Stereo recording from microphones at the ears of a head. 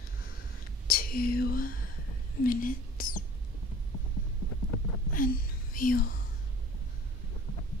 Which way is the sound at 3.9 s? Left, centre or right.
Left.